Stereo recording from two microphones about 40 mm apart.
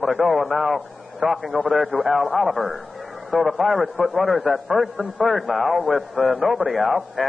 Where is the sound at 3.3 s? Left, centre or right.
Centre.